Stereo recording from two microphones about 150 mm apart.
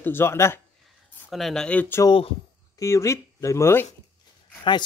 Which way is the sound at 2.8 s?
20° left (ahead or behind).